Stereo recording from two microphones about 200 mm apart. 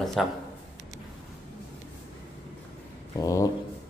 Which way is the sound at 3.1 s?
15° left (ahead or behind).